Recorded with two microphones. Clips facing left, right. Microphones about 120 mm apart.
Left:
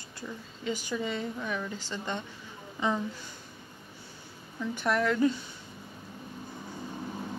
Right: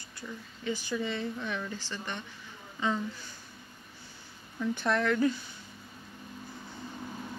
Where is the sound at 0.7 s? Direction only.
15° left (ahead or behind).